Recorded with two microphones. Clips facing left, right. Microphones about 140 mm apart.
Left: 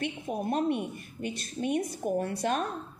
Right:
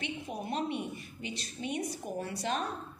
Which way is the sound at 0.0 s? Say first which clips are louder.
Left 6 dB; 50° left (ahead or behind).